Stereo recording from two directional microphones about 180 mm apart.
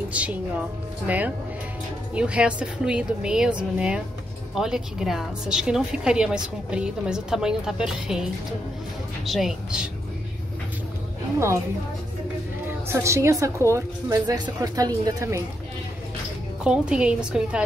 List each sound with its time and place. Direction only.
0.1 s a woman's voice: 5° right (ahead or behind)
11.3 s a woman's voice: 15° right (ahead or behind)
12.6 s a woman's voice: 15° right (ahead or behind)
16.6 s a woman's voice: 5° right (ahead or behind)